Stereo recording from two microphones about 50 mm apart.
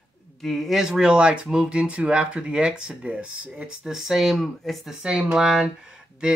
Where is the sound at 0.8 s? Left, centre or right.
Centre.